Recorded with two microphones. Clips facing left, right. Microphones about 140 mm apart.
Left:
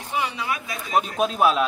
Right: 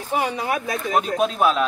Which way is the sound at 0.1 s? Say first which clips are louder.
Right 4 dB; 45° right (ahead or behind).